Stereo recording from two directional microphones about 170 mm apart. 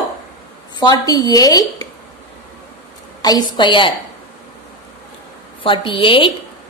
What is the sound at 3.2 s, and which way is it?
Speech, 25° left (ahead or behind).